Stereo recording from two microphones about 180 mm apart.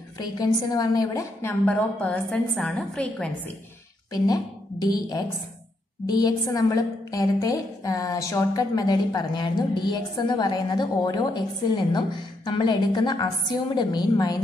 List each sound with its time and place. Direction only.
0.2 s a woman's voice: 20° left (ahead or behind); by 3.3 s 5° left (ahead or behind)
4.1 s a sound: 20° left (ahead or behind)
6.0 s a woman's voice: 20° left (ahead or behind)